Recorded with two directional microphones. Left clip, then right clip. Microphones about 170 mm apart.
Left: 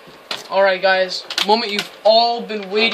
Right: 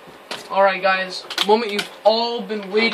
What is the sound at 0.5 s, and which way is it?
Speech, 45° left (ahead or behind).